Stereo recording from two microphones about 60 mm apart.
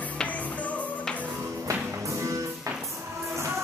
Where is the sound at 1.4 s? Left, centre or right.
Right.